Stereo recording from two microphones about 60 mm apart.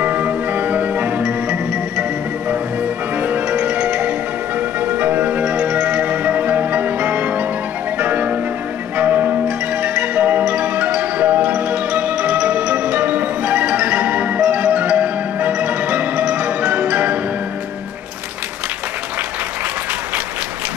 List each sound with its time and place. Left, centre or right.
0.0 s music: right
3.2 s music: right